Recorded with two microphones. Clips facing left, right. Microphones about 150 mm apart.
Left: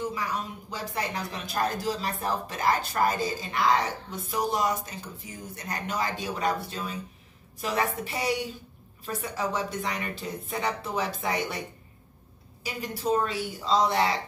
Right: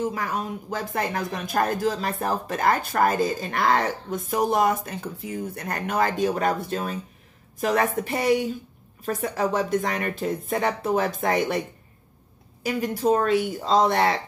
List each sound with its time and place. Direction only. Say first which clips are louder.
0.0 s speech: right 4 dB; 50° right (ahead or behind)
12.6 s speech: right 7 dB; 50° right (ahead or behind)